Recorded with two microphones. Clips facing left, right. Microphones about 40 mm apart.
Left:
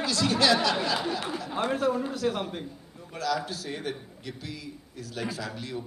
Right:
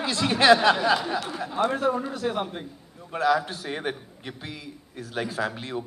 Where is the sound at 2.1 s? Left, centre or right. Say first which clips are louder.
Right 1 dB; right.